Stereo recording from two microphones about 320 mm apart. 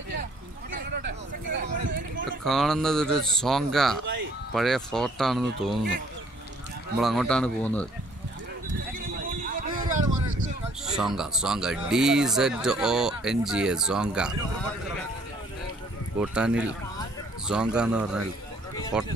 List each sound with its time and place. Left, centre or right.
0.7 s a sound: right
2.4 s speech: centre
7.0 s speech: centre
9.4 s a sound: right
11.0 s speech: centre
16.2 s speech: centre